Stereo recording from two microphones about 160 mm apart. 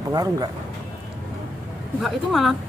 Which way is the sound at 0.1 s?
20° right (ahead or behind).